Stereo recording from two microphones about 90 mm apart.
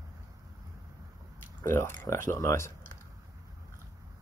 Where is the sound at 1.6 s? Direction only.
25° left (ahead or behind).